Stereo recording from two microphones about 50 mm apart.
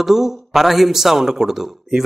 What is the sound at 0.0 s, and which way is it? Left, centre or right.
A man's voice, centre.